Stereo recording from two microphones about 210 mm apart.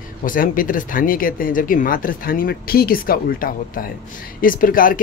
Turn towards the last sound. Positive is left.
turn(degrees=40)  # may be behind; listen again after turning